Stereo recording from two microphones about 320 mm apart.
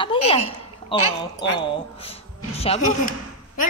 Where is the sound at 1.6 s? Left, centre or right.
Centre.